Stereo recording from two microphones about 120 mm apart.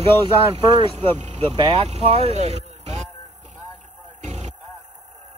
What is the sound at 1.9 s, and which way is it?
Speech, 60° right (ahead or behind).